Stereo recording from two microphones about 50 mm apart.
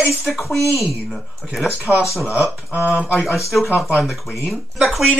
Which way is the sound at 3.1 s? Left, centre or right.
Centre.